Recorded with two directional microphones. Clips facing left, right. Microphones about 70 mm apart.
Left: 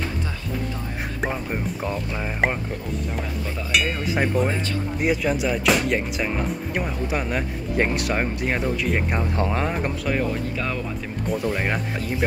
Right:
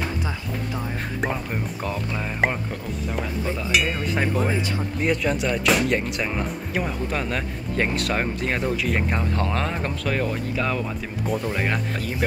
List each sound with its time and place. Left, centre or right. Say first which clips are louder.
1.2 s speech: left 1 dB; centre
9.4 s speech: left 2 dB; centre
11.5 s speech: even; centre